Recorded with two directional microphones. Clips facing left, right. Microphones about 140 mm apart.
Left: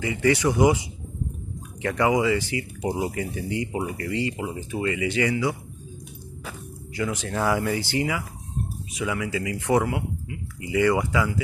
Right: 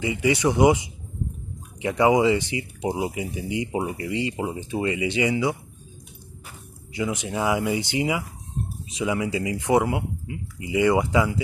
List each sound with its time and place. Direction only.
0.0 s speech: 20° right (ahead or behind)
7.0 s speech: 15° right (ahead or behind)